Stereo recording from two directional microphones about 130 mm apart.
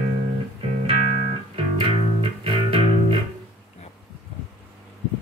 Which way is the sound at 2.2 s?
50° right (ahead or behind).